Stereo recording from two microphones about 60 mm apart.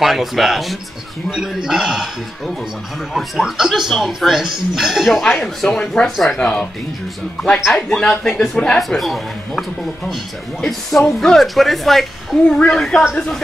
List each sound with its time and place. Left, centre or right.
0.0 s a man's voice: centre
6.4 s speech: centre
7.9 s speech: centre
8.7 s speech: centre
12.4 s speech: centre
12.7 s speech: centre